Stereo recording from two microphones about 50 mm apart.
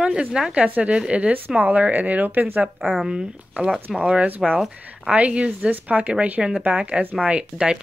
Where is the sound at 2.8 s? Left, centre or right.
Centre.